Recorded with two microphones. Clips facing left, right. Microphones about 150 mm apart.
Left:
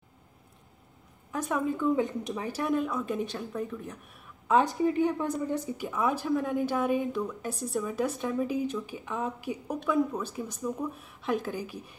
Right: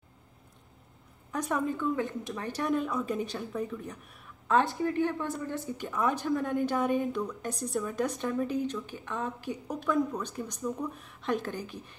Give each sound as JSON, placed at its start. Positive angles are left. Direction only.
{"t": 1.3, "sound": "a woman's voice", "side_deg": 0}
{"t": 1.8, "sound": "a woman's voice", "side_deg": 20}
{"t": 2.4, "sound": "a woman's voice", "side_deg": 5}
{"t": 4.7, "sound": "a woman's voice", "side_deg": 15}
{"t": 5.9, "sound": "a woman's voice", "side_deg": 5}